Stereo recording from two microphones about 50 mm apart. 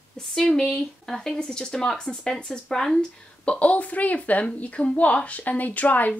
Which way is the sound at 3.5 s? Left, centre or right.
Left.